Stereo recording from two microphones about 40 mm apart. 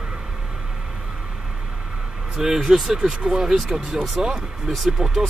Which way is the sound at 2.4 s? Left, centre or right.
Centre.